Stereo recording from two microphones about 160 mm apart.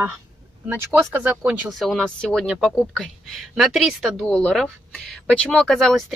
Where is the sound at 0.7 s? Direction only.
10° right (ahead or behind).